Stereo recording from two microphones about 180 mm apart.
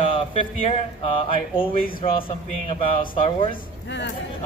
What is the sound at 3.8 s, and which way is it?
Speech, 75° left (ahead or behind).